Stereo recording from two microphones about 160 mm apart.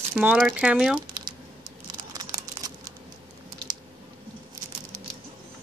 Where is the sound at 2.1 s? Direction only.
25° right (ahead or behind).